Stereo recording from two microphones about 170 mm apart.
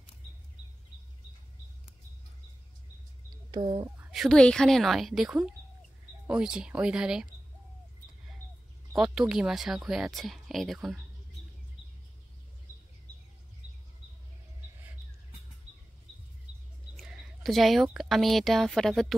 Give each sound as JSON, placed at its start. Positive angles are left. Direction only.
{"t": 3.5, "sound": "speech", "side_deg": -30}
{"t": 4.1, "sound": "speech", "side_deg": 0}
{"t": 8.9, "sound": "speech", "side_deg": -5}
{"t": 16.9, "sound": "speech", "side_deg": -5}